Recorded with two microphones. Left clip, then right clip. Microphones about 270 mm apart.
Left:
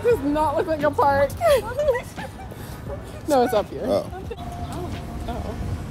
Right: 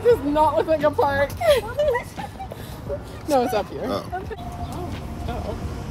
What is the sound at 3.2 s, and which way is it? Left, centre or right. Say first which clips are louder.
Speech: left 2 dB; centre.